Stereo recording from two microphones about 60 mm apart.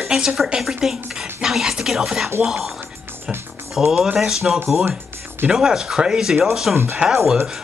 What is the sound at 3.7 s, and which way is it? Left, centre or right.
Speech, centre.